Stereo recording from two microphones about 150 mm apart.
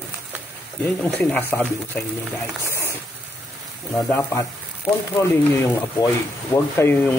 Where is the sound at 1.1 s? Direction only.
10° left (ahead or behind).